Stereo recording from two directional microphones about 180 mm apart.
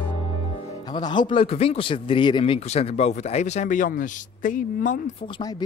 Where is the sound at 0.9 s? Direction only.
25° left (ahead or behind); by 5.0 s 50° left (ahead or behind).